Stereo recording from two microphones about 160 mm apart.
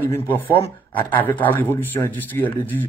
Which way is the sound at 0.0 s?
15° left (ahead or behind).